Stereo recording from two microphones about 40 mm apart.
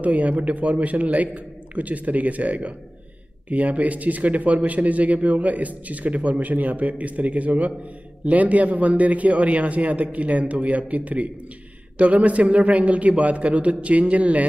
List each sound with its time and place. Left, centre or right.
0.0 s speech: right